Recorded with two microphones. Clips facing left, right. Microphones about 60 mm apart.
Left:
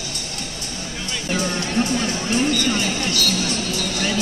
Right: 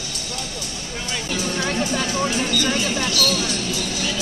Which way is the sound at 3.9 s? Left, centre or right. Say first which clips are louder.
Left 3 dB; left.